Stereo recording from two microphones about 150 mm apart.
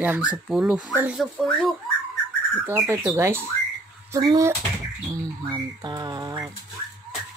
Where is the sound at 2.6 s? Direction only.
20° right (ahead or behind).